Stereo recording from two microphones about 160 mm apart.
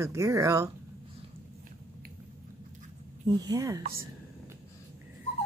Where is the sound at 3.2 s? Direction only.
25° right (ahead or behind).